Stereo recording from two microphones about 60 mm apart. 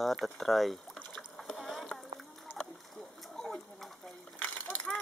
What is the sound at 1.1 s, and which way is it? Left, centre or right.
Boat, centre.